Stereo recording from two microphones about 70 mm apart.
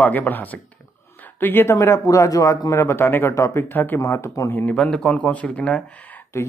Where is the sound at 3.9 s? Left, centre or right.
Left.